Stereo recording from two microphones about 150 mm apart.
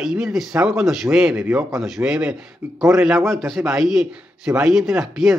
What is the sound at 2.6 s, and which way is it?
Speech, 20° right (ahead or behind).